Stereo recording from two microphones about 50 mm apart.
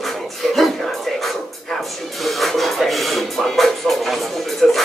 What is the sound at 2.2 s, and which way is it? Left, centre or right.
Music, centre.